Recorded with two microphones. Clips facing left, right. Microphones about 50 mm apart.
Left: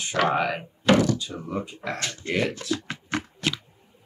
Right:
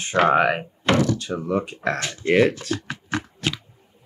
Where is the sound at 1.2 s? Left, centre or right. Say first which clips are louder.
Right 7 dB; right.